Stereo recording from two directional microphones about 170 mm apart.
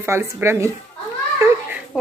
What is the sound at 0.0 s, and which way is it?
Speech, 15° right (ahead or behind).